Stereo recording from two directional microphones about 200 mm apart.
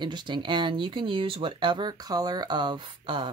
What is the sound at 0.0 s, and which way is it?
Speech, 20° right (ahead or behind).